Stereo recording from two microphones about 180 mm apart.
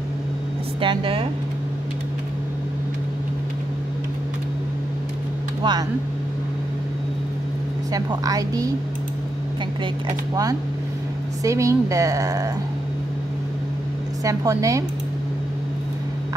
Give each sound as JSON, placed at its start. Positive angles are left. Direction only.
{"t": 0.7, "sound": "a woman's voice", "side_deg": -30}
{"t": 5.6, "sound": "speech", "side_deg": -25}
{"t": 7.9, "sound": "a woman's voice", "side_deg": -20}
{"t": 11.4, "sound": "speech", "side_deg": -15}
{"t": 14.2, "sound": "speech", "side_deg": -20}